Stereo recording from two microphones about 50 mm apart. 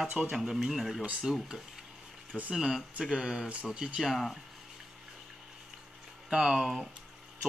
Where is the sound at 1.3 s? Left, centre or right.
Centre.